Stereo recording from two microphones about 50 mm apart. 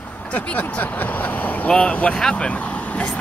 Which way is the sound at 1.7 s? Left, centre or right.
Left.